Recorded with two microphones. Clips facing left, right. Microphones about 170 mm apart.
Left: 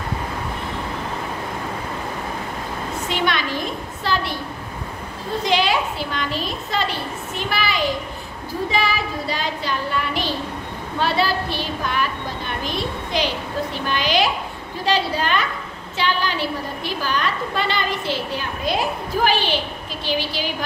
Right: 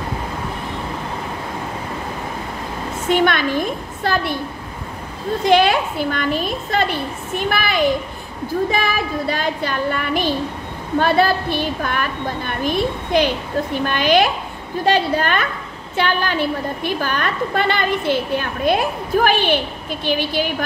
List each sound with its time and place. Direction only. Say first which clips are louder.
3.1 s a woman's voice: right 7 dB; 50° right (ahead or behind)
5.4 s a woman's voice: right 6 dB; 55° right (ahead or behind)
9.3 s a woman's voice: right 3 dB; 55° right (ahead or behind)